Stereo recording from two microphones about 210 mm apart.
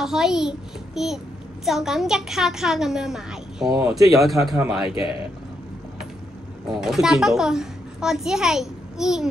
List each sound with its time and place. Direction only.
0.0 s a child's voice: centre (ahead or behind)
4.8 s a man's voice: 25° left (ahead or behind)
6.7 s a child's voice: centre (ahead or behind)